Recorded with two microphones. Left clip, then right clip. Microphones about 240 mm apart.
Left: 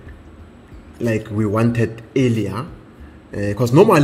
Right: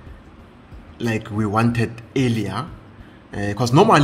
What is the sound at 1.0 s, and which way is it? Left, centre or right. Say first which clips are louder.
A man's voice: left 3 dB; centre.